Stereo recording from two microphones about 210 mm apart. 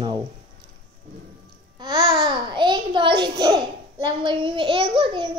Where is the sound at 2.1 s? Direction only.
20° right (ahead or behind).